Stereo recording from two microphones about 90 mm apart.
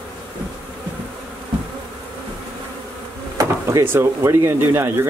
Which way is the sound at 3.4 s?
40° right (ahead or behind).